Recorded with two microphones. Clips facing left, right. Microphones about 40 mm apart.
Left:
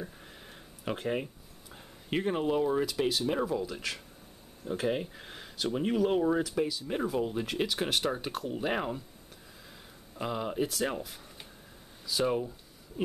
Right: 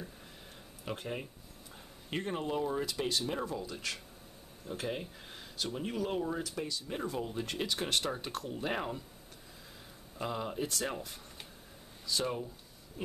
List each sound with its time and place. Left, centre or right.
0.8 s speech: left; by 3.3 s centre
3.3 s speech: centre
6.9 s speech: centre
10.1 s speech: centre
13.0 s a sound: centre